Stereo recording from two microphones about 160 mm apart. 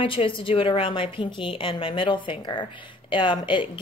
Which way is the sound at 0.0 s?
35° left (ahead or behind).